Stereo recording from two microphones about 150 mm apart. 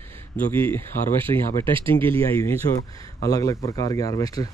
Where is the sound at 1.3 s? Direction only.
30° left (ahead or behind).